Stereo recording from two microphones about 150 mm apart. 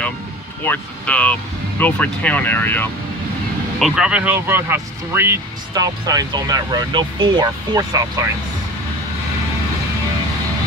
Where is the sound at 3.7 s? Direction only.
5° right (ahead or behind); by 8.2 s 25° right (ahead or behind).